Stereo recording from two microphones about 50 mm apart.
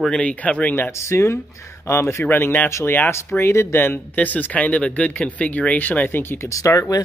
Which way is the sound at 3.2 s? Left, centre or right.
Left.